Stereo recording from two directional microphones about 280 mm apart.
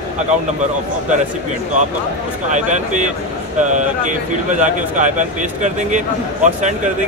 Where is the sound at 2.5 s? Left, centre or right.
Right.